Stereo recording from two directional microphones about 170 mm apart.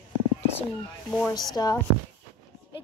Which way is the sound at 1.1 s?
5° left (ahead or behind).